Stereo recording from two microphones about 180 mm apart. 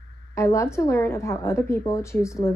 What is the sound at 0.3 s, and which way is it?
A woman's voice, 15° left (ahead or behind).